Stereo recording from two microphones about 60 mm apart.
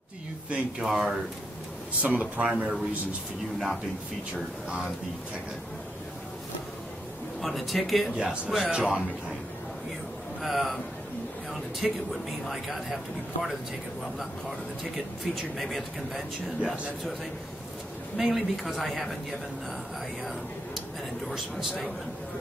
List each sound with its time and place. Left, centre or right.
0.5 s speech: centre
2.0 s speech: right
3.5 s speech: centre
7.4 s speech: centre
8.7 s speech: centre
10.4 s speech: centre
11.8 s speech: centre
15.3 s speech: centre
18.1 s a man's voice: centre